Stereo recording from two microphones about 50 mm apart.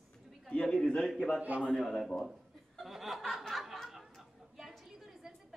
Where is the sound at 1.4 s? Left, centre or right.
Right.